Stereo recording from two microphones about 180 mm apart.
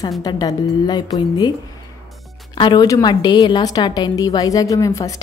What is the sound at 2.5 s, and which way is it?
A woman's voice, 25° left (ahead or behind).